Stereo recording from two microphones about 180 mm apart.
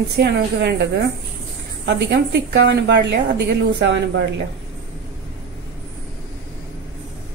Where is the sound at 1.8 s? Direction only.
70° right (ahead or behind).